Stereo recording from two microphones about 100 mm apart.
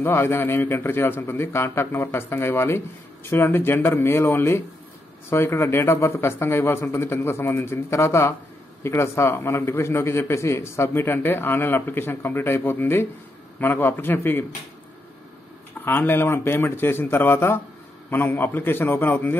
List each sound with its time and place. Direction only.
0.0 s a man's voice: 25° left (ahead or behind)
15.8 s a man's voice: 20° left (ahead or behind)